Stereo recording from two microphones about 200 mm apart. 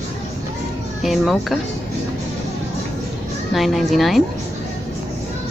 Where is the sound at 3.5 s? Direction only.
Centre (ahead or behind).